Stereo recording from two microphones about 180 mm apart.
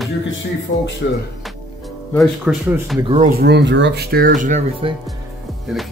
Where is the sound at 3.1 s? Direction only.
55° right (ahead or behind).